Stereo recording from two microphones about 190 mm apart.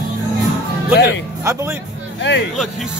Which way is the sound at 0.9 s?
65° left (ahead or behind).